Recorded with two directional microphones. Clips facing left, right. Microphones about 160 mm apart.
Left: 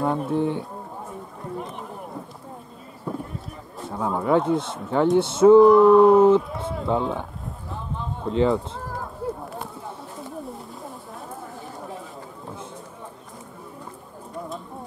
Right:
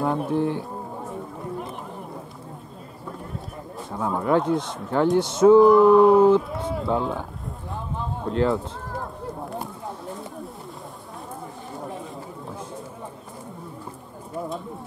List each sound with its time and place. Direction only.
0.0 s speech: centre (ahead or behind)
3.9 s speech: centre (ahead or behind)
8.3 s speech: centre (ahead or behind)